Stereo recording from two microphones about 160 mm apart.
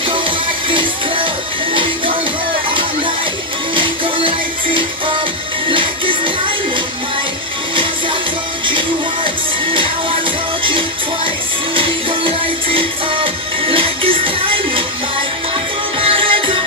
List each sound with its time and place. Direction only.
0.7 s music: 35° right (ahead or behind)
3.7 s music: 30° right (ahead or behind)
8.6 s music: 30° right (ahead or behind)
11.7 s music: 35° right (ahead or behind)
16.1 s music: 35° right (ahead or behind)